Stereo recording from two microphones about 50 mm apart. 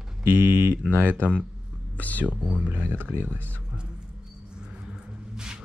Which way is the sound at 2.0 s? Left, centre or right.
Left.